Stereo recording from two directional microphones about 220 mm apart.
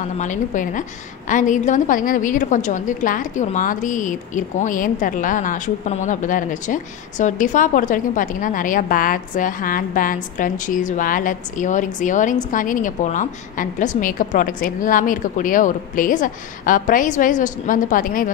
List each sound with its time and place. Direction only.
0.2 s a woman's voice: 35° left (ahead or behind)